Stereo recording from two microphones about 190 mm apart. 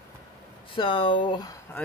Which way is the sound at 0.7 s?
30° left (ahead or behind).